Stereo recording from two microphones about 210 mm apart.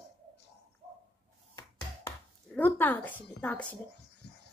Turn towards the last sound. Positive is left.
turn(degrees=50)  # may be behind; listen again after turning